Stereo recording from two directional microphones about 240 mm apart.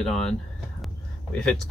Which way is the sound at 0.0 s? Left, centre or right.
Centre.